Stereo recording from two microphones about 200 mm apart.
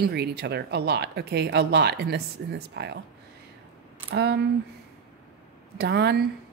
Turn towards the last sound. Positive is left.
turn(degrees=-55)  # may be behind; listen again after turning